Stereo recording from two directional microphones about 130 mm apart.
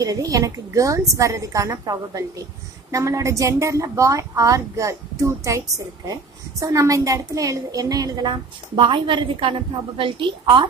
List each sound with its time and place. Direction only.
0.0 s a woman's voice: 25° right (ahead or behind)
6.6 s a woman's voice: 25° right (ahead or behind)